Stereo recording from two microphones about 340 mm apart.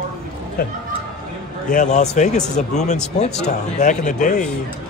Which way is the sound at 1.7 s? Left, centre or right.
Left.